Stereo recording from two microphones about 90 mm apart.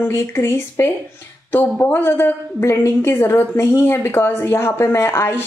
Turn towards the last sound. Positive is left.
turn(degrees=25)  # may be behind; listen again after turning